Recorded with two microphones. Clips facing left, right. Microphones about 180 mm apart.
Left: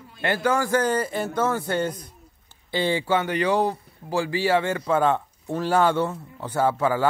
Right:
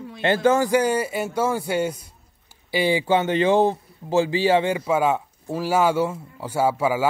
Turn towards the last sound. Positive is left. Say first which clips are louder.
# right 1 dB
turn(degrees=-10)  # may be behind; listen again after turning